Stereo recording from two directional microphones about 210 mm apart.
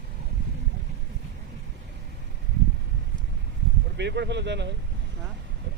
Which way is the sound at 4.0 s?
55° right (ahead or behind).